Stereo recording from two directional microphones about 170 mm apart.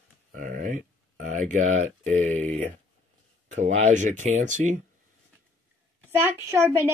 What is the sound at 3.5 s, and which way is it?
Speech, 45° right (ahead or behind).